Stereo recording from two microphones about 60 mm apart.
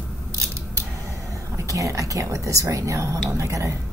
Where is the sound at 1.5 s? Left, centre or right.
Right.